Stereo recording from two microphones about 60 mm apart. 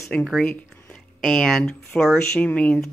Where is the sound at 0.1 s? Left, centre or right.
Centre.